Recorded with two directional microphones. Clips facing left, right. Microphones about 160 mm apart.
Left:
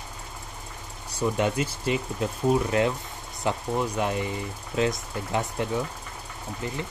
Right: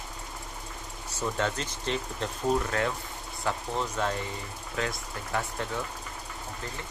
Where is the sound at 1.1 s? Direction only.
15° left (ahead or behind).